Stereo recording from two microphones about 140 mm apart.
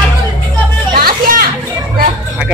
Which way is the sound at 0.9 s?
90° right.